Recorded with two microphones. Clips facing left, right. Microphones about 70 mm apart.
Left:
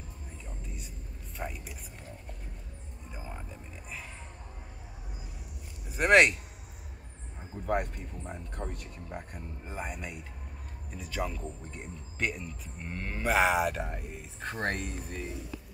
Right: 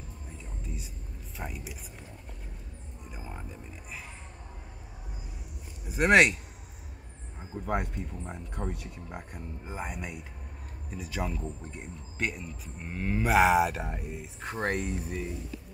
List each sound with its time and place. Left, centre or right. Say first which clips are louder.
1.4 s speech: left 1 dB; centre
5.9 s speech: right 1 dB; centre
7.6 s speech: left 1 dB; centre